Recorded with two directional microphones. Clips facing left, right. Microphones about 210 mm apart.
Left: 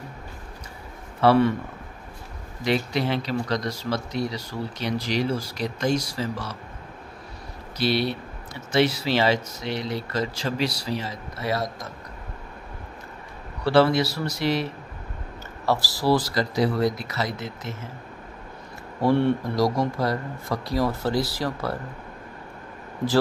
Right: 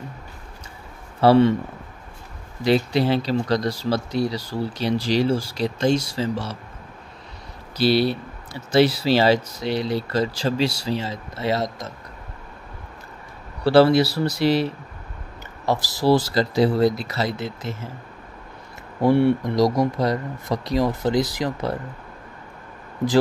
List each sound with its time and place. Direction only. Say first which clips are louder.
1.2 s speech: right 3 dB; 25° right (ahead or behind)
2.6 s speech: right 5 dB; 30° right (ahead or behind)
7.7 s speech: right 5 dB; 35° right (ahead or behind)
13.7 s speech: right 4 dB; 35° right (ahead or behind)
15.6 s speech: right 3 dB; 20° right (ahead or behind)
18.9 s speech: right 3 dB; 15° right (ahead or behind)